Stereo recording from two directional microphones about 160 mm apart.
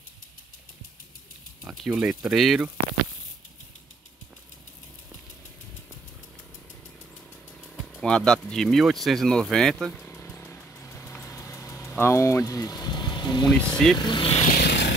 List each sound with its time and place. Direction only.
1.7 s speech: 5° right (ahead or behind)
7.7 s speech: centre (ahead or behind)
10.0 s vehicle: 15° left (ahead or behind)
12.0 s speech: 15° left (ahead or behind)
13.5 s speech: 5° left (ahead or behind)
13.9 s speech: 30° left (ahead or behind)
14.5 s vehicle: 90° left